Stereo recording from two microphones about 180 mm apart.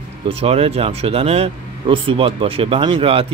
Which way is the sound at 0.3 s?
30° right (ahead or behind).